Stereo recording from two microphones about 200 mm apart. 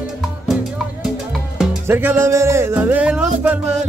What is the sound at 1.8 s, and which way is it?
Music, 10° right (ahead or behind).